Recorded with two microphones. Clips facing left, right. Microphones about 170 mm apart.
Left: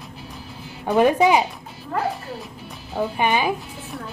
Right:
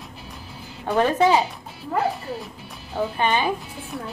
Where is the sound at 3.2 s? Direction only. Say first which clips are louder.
Left 1 dB; 10° left (ahead or behind).